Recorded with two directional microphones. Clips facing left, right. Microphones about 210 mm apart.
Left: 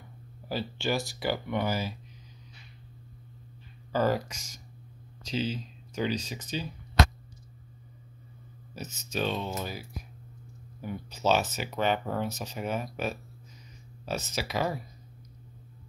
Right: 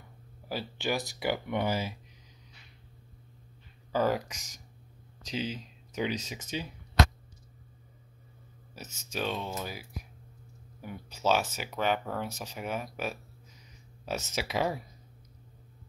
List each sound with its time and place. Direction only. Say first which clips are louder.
0.5 s speech: left 2 dB; 10° right (ahead or behind)
3.9 s speech: left 1 dB; 15° right (ahead or behind)
8.7 s speech: left 3 dB; 10° right (ahead or behind)
10.8 s speech: left 3 dB; 10° right (ahead or behind)
14.0 s speech: left 1 dB; 20° right (ahead or behind)